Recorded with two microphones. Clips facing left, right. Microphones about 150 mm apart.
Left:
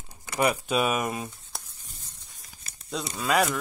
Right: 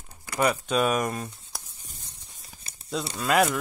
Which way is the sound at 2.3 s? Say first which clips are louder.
Right 2 dB; 30° right (ahead or behind).